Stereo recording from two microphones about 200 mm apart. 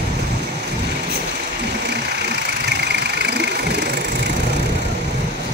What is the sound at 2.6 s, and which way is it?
Vehicle, 55° right (ahead or behind).